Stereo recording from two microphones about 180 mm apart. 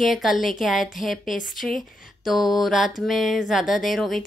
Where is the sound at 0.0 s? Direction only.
Centre (ahead or behind).